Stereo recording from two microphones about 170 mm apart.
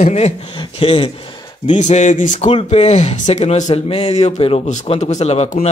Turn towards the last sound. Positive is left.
turn(degrees=40)  # may be behind; listen again after turning